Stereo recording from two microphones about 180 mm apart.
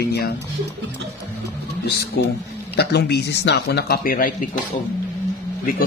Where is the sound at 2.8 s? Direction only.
65° left (ahead or behind); by 4.4 s 50° left (ahead or behind).